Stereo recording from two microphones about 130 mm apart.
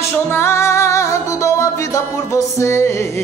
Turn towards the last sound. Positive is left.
turn(degrees=20)  # may be behind; listen again after turning